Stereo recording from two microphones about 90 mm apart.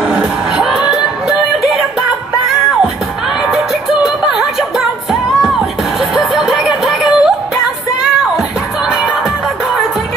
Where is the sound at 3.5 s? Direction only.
5° right (ahead or behind).